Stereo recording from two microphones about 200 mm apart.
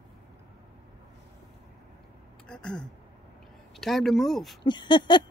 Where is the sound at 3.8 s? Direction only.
Centre (ahead or behind).